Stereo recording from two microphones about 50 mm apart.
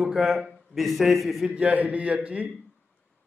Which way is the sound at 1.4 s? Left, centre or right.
Right.